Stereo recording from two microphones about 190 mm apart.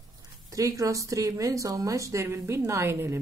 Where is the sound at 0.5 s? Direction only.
15° right (ahead or behind).